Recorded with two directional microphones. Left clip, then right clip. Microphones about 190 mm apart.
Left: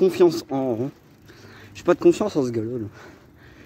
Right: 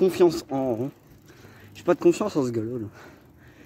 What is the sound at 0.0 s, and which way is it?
Speech, centre (ahead or behind).